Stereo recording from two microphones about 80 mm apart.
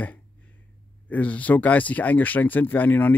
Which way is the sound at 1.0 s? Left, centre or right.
Centre.